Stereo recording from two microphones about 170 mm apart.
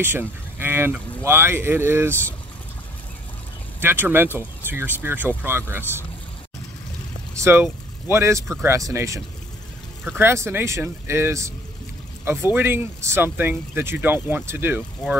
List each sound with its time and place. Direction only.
0.0 s speech: 10° right (ahead or behind)
3.8 s speech: 10° right (ahead or behind)
7.3 s speech: 15° right (ahead or behind)
12.5 s speech: 15° right (ahead or behind)